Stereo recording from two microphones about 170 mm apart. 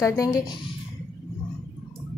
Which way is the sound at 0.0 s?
20° left (ahead or behind).